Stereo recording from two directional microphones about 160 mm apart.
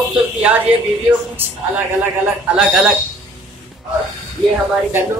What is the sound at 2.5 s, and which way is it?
Speech, 5° right (ahead or behind).